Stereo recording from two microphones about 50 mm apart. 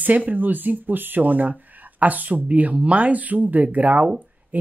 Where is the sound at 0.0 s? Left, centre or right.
Right.